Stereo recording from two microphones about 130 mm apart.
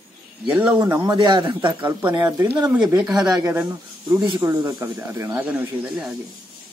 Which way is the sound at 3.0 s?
5° right (ahead or behind).